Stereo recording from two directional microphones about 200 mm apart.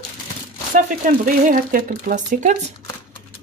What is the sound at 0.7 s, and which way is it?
Speech, 40° right (ahead or behind).